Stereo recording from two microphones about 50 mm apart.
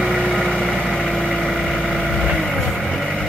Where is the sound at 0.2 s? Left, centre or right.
Centre.